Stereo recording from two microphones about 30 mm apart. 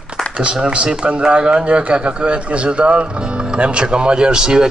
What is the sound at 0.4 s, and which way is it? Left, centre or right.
Speech, right.